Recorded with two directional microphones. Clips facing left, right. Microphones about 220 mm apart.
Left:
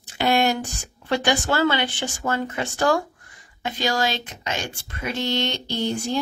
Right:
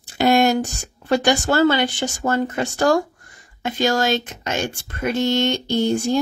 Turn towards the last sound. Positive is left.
turn(degrees=-45)  # may be behind; listen again after turning